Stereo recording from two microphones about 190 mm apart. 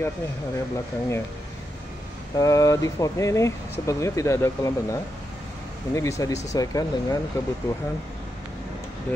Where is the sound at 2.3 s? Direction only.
20° left (ahead or behind).